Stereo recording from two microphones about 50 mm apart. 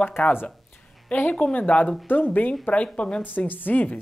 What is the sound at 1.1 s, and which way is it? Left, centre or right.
A woman's voice, left.